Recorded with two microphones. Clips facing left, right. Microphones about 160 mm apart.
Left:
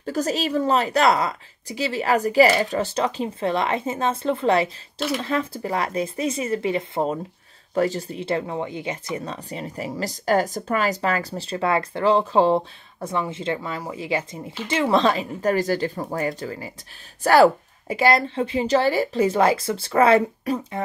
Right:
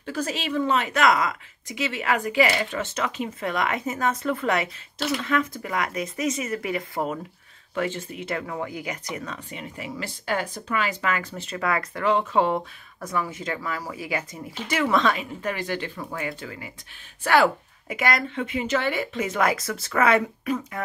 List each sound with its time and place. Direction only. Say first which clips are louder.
0.0 s speech: left 5 dB; 40° left (ahead or behind)
7.7 s speech: left 6 dB; 40° left (ahead or behind)